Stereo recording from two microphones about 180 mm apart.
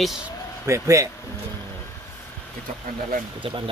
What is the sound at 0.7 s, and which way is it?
Speech, 15° right (ahead or behind).